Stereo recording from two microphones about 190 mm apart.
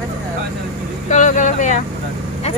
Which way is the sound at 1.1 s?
40° left (ahead or behind).